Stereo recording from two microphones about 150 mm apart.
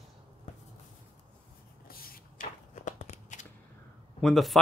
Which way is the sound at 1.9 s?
80° left.